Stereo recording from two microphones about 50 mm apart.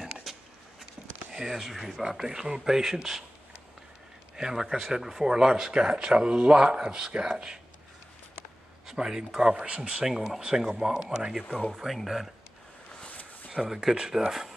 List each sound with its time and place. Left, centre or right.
0.2 s a sound: centre
1.3 s speech: centre
4.4 s speech: centre
8.9 s speech: centre
11.4 s speech: centre
11.7 s speech: centre
13.0 s a sound: left
13.5 s speech: centre